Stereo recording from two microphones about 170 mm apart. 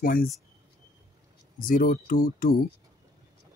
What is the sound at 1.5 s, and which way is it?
Speech, 55° left (ahead or behind).